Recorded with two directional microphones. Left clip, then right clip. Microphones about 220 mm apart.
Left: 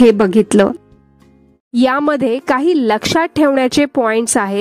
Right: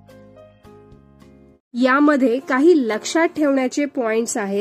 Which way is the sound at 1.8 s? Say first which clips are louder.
Left 2 dB; 40° left (ahead or behind).